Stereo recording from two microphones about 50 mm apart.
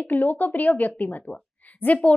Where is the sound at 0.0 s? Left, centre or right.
Left.